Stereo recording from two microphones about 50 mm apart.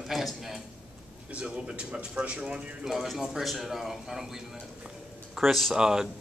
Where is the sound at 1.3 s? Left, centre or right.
Right.